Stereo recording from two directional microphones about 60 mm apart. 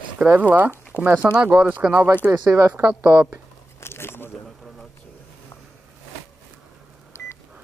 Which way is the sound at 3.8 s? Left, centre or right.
Left.